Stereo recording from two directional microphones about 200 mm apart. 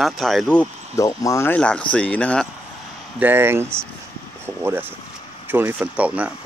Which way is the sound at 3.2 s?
10° right (ahead or behind).